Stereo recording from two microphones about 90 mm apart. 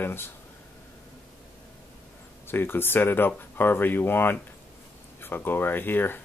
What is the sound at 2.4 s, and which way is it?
Speech, 25° left (ahead or behind).